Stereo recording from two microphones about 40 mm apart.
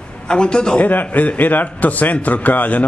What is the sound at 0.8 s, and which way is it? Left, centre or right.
A man's voice, left.